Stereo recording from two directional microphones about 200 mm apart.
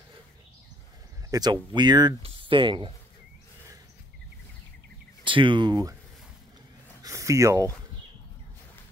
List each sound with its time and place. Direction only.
1.3 s speech: 20° right (ahead or behind)
5.2 s speech: 25° right (ahead or behind)
7.0 s a sound: 15° right (ahead or behind)